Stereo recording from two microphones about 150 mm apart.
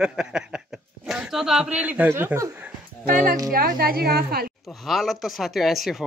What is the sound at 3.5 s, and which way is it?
Speech, 75° right (ahead or behind).